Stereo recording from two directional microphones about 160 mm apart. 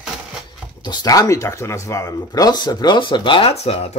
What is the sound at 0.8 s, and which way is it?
Speech, 25° left (ahead or behind).